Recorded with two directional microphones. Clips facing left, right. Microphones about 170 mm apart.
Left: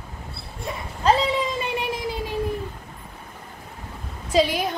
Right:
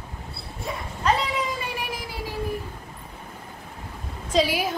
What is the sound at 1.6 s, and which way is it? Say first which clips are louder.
Siren: left 5 dB; 25° left (ahead or behind).